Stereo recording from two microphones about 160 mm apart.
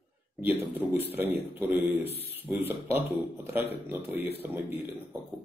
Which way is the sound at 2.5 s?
Centre (ahead or behind).